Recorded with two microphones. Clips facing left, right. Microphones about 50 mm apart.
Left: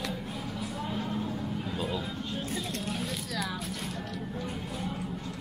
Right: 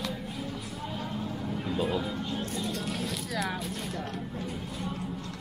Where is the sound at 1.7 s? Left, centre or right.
Centre.